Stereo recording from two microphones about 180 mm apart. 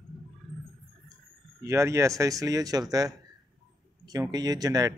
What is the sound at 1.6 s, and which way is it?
Speech, 15° right (ahead or behind).